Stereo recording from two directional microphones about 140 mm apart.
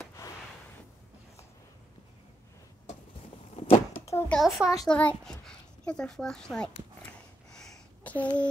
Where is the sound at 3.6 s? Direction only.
50° left (ahead or behind).